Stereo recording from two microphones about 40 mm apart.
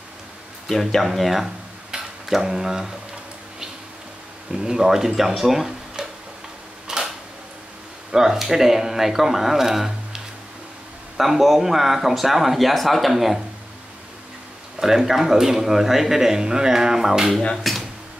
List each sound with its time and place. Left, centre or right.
0.7 s speech: centre
4.6 s speech: centre
6.9 s camera: centre
8.1 s speech: centre
14.8 s speech: centre
17.6 s dishes: centre